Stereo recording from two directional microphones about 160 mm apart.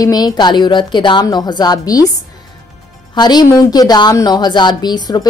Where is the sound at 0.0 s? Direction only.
25° left (ahead or behind).